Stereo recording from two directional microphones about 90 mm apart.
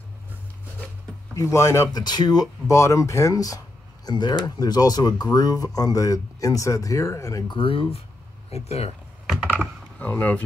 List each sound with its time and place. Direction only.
1.3 s speech: 30° left (ahead or behind)
1.9 s speech: 50° left (ahead or behind)
2.7 s speech: 35° left (ahead or behind)
7.4 s speech: 75° left (ahead or behind)
9.9 s speech: 20° left (ahead or behind)